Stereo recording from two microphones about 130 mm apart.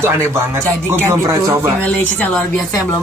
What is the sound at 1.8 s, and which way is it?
Speech, 10° left (ahead or behind).